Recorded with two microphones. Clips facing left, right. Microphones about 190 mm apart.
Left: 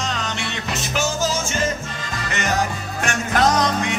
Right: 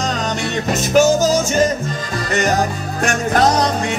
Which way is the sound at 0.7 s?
45° right (ahead or behind).